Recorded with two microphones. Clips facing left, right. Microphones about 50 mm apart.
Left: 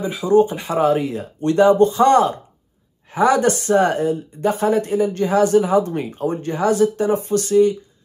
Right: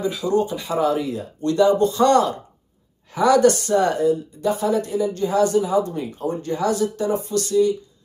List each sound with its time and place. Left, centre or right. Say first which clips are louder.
0.0 s a woman's voice: left 5 dB; left